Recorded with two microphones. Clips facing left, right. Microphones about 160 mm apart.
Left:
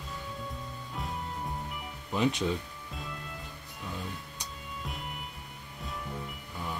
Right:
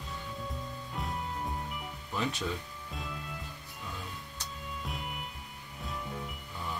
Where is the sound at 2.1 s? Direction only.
20° left (ahead or behind).